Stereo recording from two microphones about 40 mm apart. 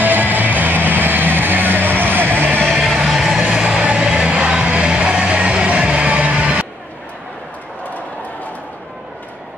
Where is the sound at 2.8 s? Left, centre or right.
Centre.